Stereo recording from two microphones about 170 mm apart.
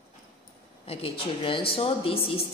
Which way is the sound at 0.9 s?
35° left (ahead or behind).